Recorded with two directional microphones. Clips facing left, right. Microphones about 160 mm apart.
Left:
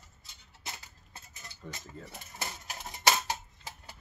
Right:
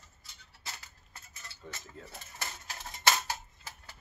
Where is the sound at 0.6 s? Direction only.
20° left (ahead or behind).